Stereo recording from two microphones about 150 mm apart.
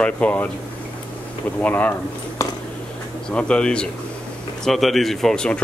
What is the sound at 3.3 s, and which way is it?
Speech, 5° left (ahead or behind).